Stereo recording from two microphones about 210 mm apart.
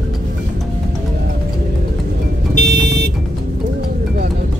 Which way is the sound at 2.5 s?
50° right (ahead or behind).